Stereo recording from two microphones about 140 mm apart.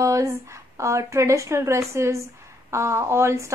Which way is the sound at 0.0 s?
20° right (ahead or behind).